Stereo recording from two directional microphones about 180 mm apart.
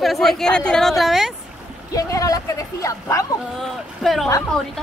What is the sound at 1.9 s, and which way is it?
Speech, 20° left (ahead or behind).